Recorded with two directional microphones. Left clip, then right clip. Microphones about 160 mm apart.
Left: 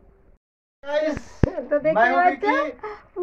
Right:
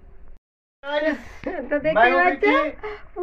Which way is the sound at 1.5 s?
10° right (ahead or behind).